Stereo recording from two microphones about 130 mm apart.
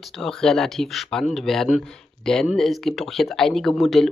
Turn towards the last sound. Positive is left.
turn(degrees=0)  # may be behind; listen again after turning